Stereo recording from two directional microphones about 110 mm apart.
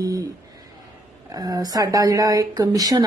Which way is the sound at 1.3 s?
35° right (ahead or behind).